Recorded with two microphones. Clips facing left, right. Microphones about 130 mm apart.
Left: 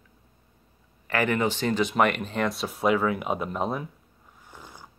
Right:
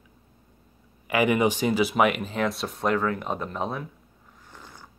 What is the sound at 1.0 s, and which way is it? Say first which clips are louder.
Speech: right 3 dB; 15° right (ahead or behind).